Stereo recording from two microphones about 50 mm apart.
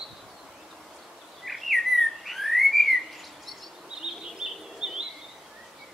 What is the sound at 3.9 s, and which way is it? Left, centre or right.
Bird, centre.